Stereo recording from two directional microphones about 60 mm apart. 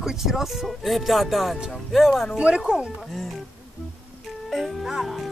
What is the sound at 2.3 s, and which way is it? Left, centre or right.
Speech, centre.